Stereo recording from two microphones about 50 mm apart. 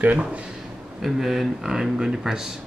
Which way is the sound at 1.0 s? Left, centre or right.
Centre.